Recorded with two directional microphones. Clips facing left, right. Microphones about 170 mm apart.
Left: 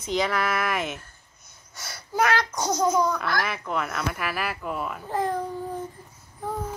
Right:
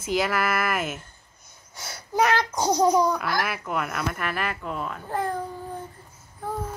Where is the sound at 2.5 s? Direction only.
30° right (ahead or behind).